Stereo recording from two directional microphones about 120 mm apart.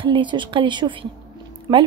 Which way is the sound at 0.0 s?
45° right (ahead or behind).